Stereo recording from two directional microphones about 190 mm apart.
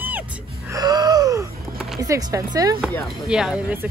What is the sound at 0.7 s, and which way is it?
Gasp, 20° right (ahead or behind).